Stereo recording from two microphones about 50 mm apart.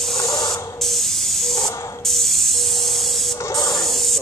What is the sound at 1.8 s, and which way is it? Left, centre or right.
Spray, left.